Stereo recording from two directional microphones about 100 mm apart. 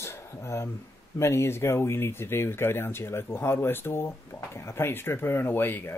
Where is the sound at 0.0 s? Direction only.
30° left (ahead or behind).